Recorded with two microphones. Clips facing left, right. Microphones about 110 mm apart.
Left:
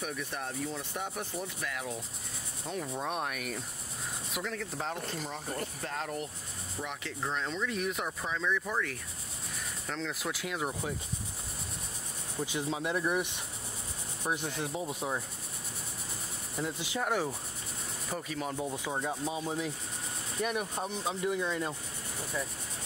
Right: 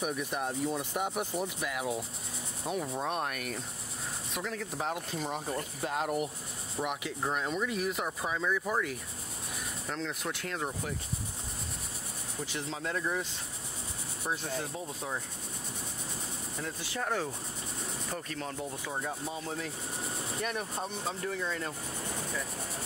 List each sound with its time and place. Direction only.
0.0 s speech: 15° right (ahead or behind)
9.8 s speech: centre (ahead or behind)
12.4 s speech: 15° left (ahead or behind)
16.6 s speech: 15° left (ahead or behind)